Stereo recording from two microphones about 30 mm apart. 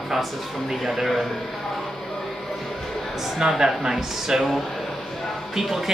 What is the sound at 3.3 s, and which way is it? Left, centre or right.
A woman's voice, centre.